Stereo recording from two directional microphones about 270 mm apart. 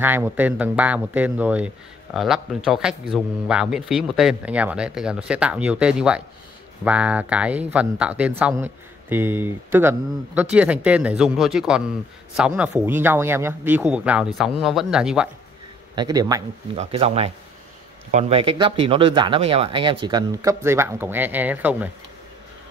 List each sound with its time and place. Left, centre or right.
0.0 s speech: centre
15.9 s speech: centre